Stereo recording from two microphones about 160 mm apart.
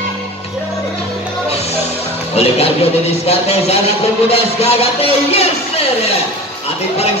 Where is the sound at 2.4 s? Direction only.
40° left (ahead or behind).